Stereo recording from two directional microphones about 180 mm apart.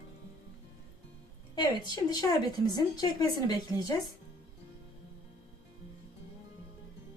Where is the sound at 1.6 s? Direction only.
25° left (ahead or behind).